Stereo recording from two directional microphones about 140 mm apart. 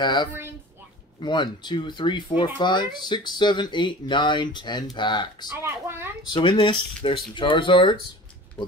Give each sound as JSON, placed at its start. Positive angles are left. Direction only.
{"t": 0.0, "sound": "speech", "side_deg": 35}
{"t": 5.6, "sound": "a sound", "side_deg": -15}
{"t": 6.3, "sound": "speech", "side_deg": 35}